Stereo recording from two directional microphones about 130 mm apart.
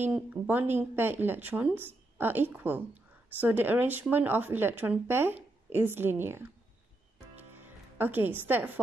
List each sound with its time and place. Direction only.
0.0 s speech: 15° right (ahead or behind)
7.3 s music: 15° right (ahead or behind)